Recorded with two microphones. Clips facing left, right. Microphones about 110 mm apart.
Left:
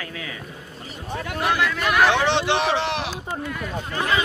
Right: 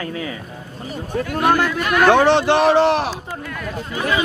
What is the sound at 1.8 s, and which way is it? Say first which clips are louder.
Speech: right 2 dB; centre (ahead or behind).